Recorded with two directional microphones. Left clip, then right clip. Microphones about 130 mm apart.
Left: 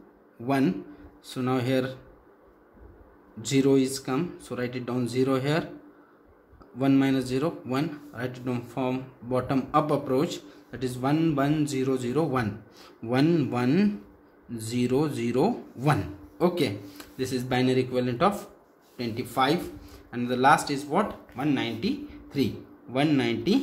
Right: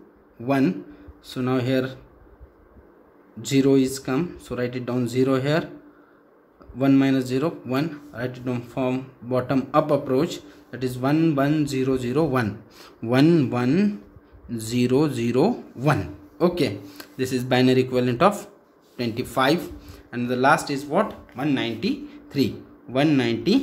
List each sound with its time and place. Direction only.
0.4 s speech: 15° right (ahead or behind)
3.3 s speech: 20° right (ahead or behind)
6.8 s speech: 20° right (ahead or behind)
13.6 s speech: 10° right (ahead or behind)
14.5 s speech: 30° right (ahead or behind)
20.1 s speech: 25° right (ahead or behind)